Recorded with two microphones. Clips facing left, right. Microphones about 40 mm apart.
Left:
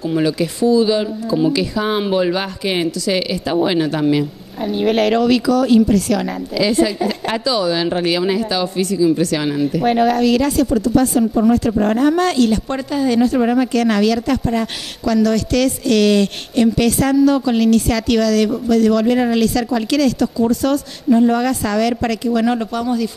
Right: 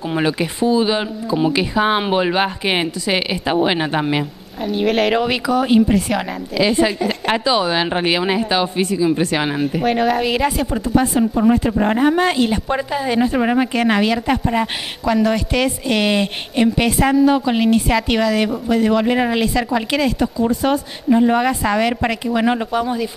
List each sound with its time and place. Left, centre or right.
0.0 s speech: right
4.8 s speech: centre
5.1 s speech: right
9.8 s speech: centre
10.1 s speech: right